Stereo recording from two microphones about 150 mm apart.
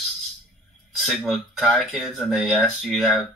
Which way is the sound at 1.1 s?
Centre (ahead or behind).